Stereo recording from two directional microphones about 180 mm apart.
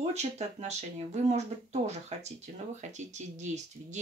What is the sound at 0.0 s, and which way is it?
Speech, 40° right (ahead or behind).